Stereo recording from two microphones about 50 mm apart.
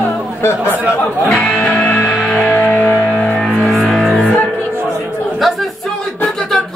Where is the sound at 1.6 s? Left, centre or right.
Left.